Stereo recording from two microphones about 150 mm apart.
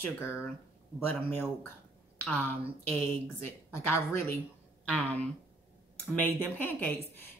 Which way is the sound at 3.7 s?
15° left (ahead or behind).